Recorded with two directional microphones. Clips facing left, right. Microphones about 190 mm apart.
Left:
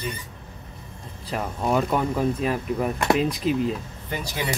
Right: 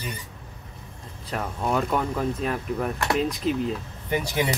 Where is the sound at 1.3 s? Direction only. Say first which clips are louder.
Left 2 dB; 5° left (ahead or behind).